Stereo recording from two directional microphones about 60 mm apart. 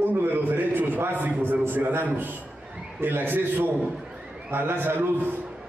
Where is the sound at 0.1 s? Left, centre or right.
Right.